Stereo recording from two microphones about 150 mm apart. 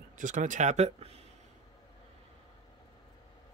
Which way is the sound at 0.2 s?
55° right (ahead or behind).